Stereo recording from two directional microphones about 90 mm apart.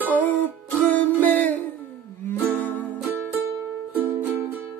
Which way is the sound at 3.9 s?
20° right (ahead or behind).